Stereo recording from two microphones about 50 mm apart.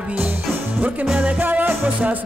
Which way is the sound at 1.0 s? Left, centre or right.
Right.